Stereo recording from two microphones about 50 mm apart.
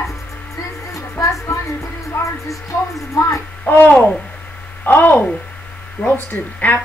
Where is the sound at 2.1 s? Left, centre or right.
Left.